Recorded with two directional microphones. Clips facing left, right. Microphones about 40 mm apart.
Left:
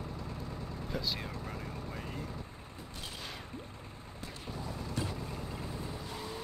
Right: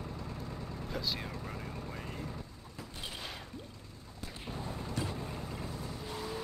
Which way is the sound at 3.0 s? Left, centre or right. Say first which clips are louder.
Right 1 dB; centre.